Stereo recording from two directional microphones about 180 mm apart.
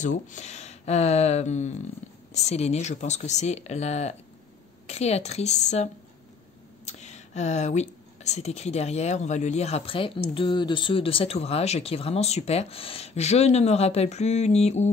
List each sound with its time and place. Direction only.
0.0 s speech: 45° left (ahead or behind)
2.0 s a sound: 40° left (ahead or behind)
2.3 s speech: 35° left (ahead or behind)
6.9 s speech: 40° left (ahead or behind)